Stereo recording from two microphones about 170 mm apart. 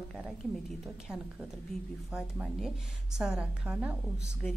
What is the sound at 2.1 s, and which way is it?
A woman's voice, 5° right (ahead or behind).